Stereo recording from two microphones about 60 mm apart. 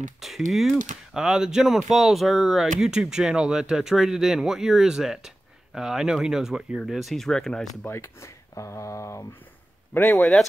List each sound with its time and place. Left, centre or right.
0.2 s speech: centre
1.2 s speech: centre
7.8 s speech: left
10.1 s speech: centre